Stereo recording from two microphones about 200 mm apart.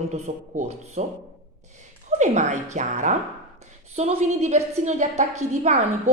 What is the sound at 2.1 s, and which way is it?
A woman's voice, 35° right (ahead or behind).